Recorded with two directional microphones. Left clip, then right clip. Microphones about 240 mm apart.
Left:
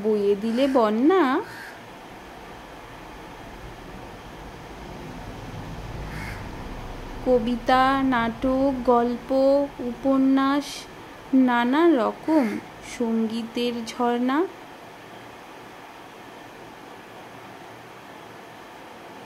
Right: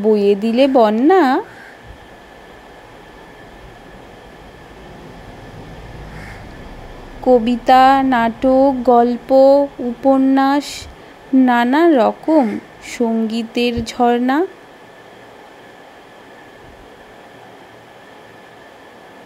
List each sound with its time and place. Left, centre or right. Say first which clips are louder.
0.1 s a woman's voice: right 8 dB; centre
7.2 s a woman's voice: right 9 dB; centre